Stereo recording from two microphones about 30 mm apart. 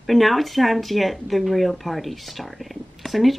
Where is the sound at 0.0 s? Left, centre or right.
Centre.